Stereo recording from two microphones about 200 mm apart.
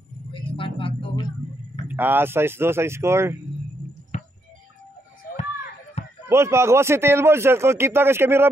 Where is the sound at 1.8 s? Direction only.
10° right (ahead or behind).